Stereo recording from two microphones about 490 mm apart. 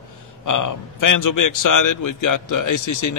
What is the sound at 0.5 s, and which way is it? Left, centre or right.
A man's voice, left.